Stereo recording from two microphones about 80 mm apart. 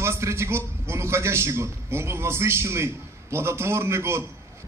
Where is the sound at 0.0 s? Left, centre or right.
Right.